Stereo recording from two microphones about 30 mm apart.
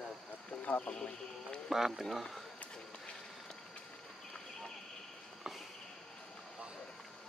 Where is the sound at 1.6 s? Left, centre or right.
Centre.